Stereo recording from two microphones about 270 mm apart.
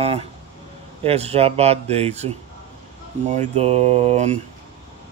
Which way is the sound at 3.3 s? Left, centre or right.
Right.